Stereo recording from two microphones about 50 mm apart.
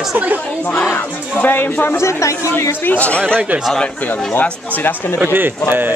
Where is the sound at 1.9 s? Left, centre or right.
Left.